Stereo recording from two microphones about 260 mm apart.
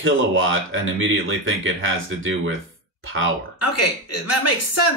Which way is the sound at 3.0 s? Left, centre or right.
Right.